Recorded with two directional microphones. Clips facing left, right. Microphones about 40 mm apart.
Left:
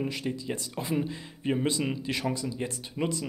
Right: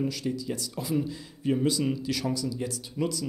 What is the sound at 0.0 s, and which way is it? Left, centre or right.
Speech, left.